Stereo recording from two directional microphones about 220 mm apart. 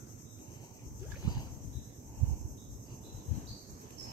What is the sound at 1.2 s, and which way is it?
Boat, 15° left (ahead or behind).